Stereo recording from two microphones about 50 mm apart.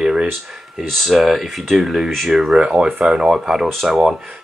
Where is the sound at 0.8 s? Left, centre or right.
Centre.